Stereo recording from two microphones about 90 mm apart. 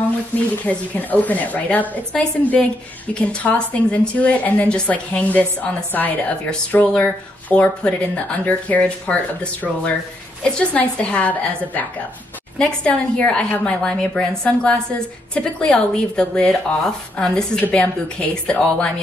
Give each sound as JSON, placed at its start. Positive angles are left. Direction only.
{"t": 0.7, "sound": "a woman's voice", "side_deg": 15}